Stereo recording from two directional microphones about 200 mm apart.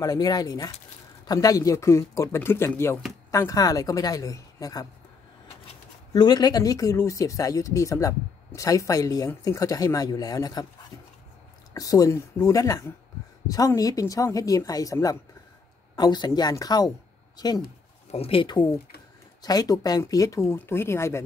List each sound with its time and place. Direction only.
0.0 s speech: 20° left (ahead or behind)
6.1 s speech: 20° left (ahead or behind)
11.7 s speech: 15° left (ahead or behind)